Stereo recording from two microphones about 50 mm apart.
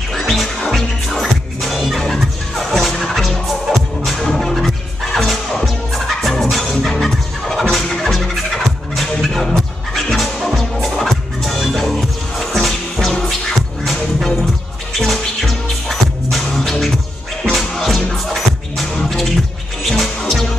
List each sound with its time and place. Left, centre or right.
0.1 s music: centre